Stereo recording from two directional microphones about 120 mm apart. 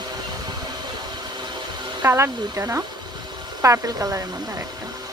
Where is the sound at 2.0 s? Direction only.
20° right (ahead or behind).